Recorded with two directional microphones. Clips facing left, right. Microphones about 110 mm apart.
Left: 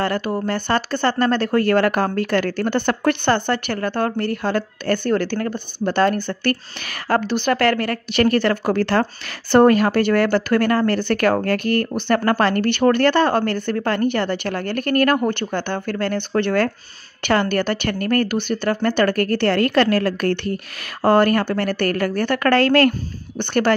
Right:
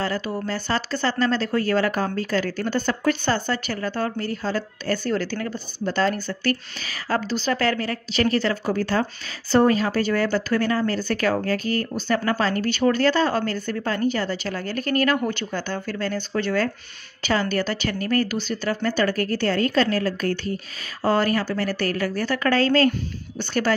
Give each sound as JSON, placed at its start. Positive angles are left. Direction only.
{"t": 0.0, "sound": "speech", "side_deg": 60}
{"t": 9.5, "sound": "speech", "side_deg": 60}